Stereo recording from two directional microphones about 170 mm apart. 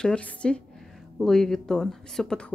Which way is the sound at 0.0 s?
5° left (ahead or behind).